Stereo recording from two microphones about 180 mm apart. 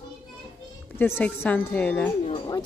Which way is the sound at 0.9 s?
10° left (ahead or behind).